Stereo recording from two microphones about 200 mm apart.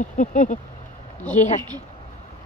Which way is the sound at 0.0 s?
40° left (ahead or behind).